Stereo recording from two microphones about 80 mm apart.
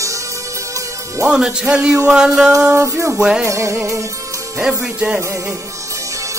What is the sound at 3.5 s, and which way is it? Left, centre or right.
Music, right.